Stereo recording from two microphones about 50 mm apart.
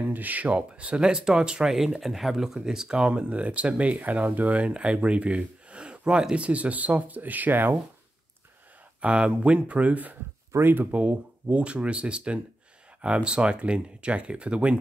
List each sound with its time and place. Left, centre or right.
0.0 s speech: right; by 3.1 s centre
3.1 s speech: right
9.0 s speech: right
10.5 s speech: right
11.0 s speech: right